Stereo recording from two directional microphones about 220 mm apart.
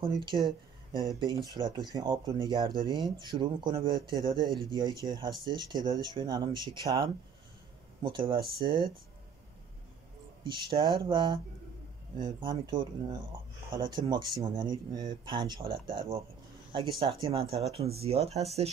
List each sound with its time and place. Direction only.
0.0 s speech: 20° right (ahead or behind)
10.4 s speech: 25° right (ahead or behind)
17.0 s speech: 25° right (ahead or behind)